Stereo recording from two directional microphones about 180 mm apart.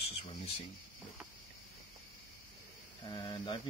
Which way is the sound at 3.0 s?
25° left (ahead or behind).